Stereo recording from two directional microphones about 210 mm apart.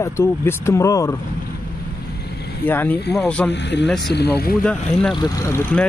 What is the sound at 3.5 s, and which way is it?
Speech, 55° left (ahead or behind).